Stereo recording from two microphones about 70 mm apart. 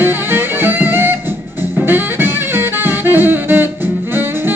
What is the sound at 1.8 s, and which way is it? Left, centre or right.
Saxophone, right.